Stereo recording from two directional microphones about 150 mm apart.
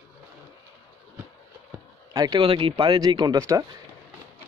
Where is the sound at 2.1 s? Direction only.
30° right (ahead or behind).